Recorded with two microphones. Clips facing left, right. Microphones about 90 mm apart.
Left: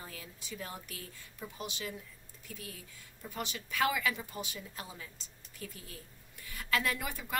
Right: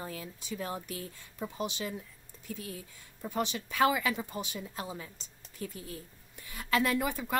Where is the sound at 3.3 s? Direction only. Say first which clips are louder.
Right 6 dB; 25° right (ahead or behind).